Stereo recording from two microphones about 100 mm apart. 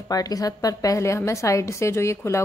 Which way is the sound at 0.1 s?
40° left (ahead or behind).